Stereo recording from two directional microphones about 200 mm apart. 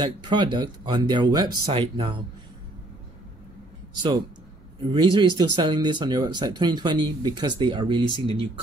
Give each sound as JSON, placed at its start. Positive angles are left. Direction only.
{"t": 0.2, "sound": "speech", "side_deg": -20}
{"t": 3.9, "sound": "speech", "side_deg": -20}